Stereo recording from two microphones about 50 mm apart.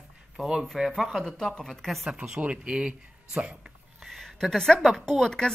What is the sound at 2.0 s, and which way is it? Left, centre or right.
Speech, centre.